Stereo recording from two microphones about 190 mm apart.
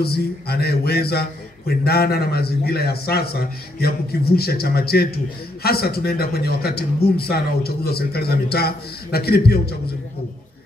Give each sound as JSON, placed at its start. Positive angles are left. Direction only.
{"t": 0.0, "sound": "speech", "side_deg": 55}